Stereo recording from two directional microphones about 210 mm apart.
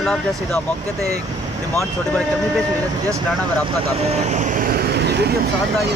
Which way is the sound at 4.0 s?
30° right (ahead or behind).